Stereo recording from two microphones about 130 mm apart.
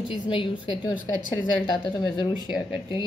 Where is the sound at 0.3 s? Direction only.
40° left (ahead or behind).